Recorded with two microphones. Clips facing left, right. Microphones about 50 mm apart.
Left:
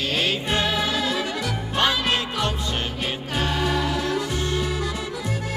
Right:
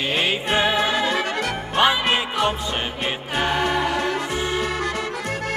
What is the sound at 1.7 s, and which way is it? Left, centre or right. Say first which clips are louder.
Music: right 4 dB; centre.